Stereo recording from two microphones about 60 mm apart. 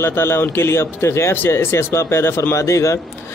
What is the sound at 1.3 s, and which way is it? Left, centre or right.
Speech, left.